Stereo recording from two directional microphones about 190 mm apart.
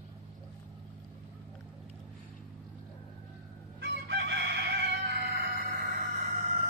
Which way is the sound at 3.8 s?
70° right (ahead or behind).